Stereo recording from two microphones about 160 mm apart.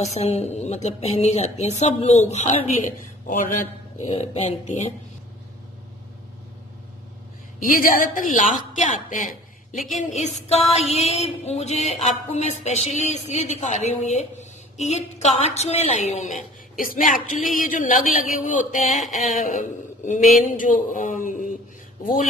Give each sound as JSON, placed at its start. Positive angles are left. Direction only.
{"t": 0.0, "sound": "a woman's voice", "side_deg": 40}
{"t": 7.6, "sound": "a woman's voice", "side_deg": 60}
{"t": 16.8, "sound": "a woman's voice", "side_deg": 60}